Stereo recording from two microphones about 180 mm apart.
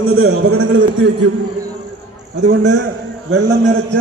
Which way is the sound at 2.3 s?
90° right.